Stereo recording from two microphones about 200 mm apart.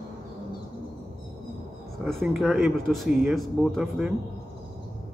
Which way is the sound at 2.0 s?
Centre (ahead or behind).